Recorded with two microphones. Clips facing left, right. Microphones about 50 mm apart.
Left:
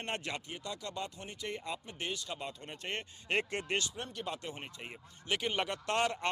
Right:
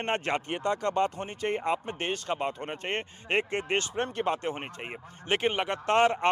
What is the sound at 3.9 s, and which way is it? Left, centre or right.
Speech, right.